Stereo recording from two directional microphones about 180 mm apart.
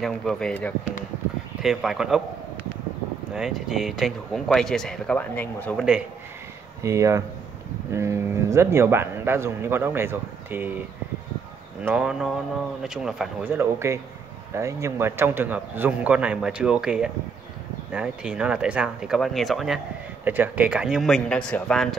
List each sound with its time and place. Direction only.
0.0 s speech: 5° left (ahead or behind)
3.3 s speech: centre (ahead or behind)
6.8 s speech: 15° right (ahead or behind)
11.8 s speech: 5° right (ahead or behind)